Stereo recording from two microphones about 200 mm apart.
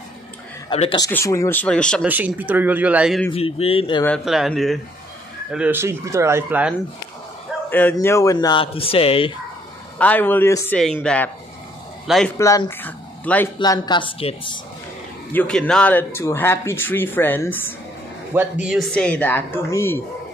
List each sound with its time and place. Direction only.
0.7 s speech: 25° left (ahead or behind); by 2.0 s 5° left (ahead or behind)
2.0 s speech: 10° right (ahead or behind)
3.3 s speech: 30° left (ahead or behind)
4.0 s speech: centre (ahead or behind)
7.7 s speech: 10° left (ahead or behind); by 9.3 s 30° left (ahead or behind)
9.9 s speech: 10° left (ahead or behind)
12.4 s speech: 15° left (ahead or behind)
13.6 s speech: 20° left (ahead or behind)
15.3 s speech: 5° left (ahead or behind)
18.3 s speech: 10° right (ahead or behind); by 20.0 s 10° left (ahead or behind)